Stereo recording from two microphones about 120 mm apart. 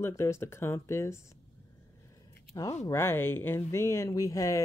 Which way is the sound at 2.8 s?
20° left (ahead or behind).